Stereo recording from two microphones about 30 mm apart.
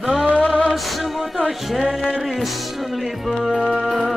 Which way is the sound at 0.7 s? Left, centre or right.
Centre.